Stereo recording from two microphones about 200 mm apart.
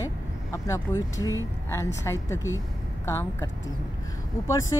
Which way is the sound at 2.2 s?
15° left (ahead or behind).